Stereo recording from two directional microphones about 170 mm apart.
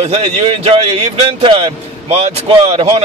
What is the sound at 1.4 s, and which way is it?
Speech, 30° right (ahead or behind).